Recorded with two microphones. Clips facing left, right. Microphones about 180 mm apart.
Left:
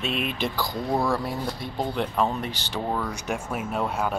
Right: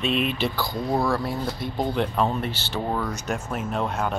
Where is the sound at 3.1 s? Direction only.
10° left (ahead or behind).